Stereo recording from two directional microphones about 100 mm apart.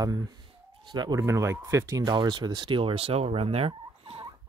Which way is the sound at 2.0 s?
45° right (ahead or behind).